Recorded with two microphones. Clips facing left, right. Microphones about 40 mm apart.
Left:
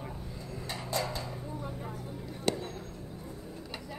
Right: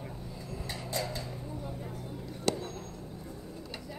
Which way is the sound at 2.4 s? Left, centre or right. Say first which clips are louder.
Even; centre.